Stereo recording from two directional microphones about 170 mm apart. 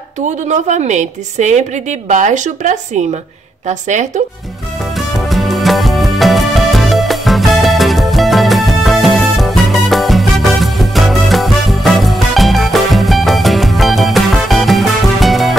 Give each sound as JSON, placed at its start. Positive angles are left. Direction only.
{"t": 0.5, "sound": "a woman's voice", "side_deg": -45}
{"t": 4.9, "sound": "music", "side_deg": 0}